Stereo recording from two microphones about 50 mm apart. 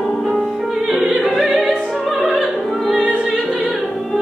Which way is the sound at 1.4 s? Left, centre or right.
Centre.